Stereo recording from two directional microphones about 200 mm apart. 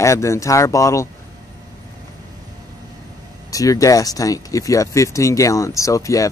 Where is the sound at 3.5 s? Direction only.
15° left (ahead or behind).